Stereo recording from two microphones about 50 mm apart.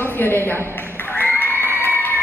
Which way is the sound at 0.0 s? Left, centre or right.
Left.